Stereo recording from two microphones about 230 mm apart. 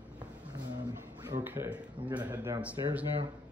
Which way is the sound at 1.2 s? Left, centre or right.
Centre.